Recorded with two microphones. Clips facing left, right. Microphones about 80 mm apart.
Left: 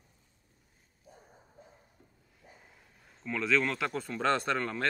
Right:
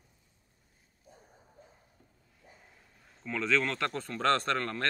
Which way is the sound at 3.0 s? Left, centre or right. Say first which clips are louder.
Even; centre.